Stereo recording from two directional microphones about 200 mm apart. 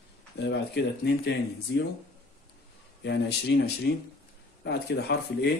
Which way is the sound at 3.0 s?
60° left (ahead or behind).